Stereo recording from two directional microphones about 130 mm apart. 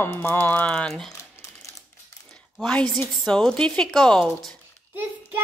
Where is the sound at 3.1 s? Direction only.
5° left (ahead or behind).